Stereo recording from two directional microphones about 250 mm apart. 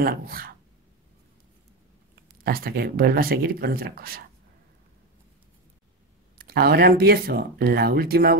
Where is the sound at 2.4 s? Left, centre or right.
Right.